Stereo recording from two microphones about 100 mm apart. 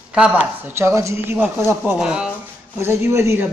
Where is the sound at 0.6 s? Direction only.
25° right (ahead or behind).